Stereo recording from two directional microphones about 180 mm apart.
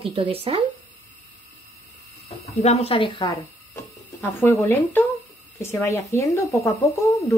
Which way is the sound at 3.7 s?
15° left (ahead or behind).